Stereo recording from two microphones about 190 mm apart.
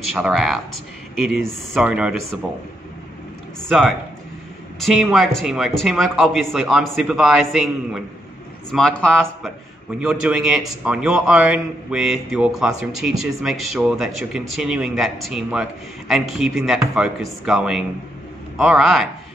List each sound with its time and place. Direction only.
0.1 s speech: centre (ahead or behind)
3.6 s speech: centre (ahead or behind)